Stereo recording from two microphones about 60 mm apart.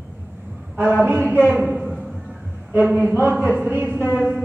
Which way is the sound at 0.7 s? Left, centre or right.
Right.